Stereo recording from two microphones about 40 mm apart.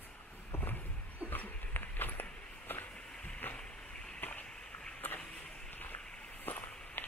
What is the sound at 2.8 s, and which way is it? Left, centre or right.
Vehicle, left.